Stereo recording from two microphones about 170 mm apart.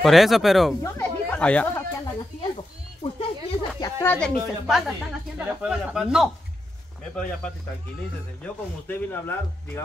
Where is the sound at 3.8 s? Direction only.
15° left (ahead or behind).